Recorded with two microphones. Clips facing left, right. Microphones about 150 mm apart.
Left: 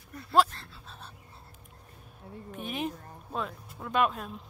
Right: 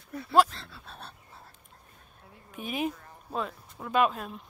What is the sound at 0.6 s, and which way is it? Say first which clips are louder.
Dog: right 2 dB; 65° right (ahead or behind).